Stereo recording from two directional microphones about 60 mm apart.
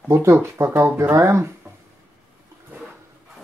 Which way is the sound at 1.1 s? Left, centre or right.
Right.